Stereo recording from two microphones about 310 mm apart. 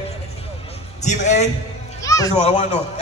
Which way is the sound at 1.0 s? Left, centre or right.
Left.